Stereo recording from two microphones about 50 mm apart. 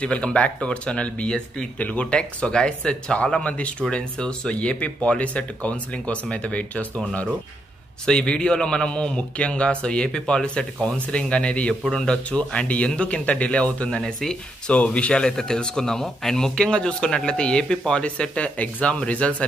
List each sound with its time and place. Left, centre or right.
0.0 s a man's voice: left
8.1 s a man's voice: centre
11.8 s speech: centre
12.3 s a man's voice: left
13.8 s a man's voice: centre